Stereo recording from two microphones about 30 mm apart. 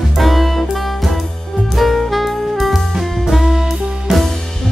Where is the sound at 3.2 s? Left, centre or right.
Centre.